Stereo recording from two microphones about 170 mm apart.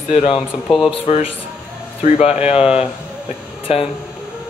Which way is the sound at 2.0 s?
40° left (ahead or behind).